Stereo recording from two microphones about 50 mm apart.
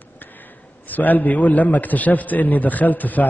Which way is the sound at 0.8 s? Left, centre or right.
Left.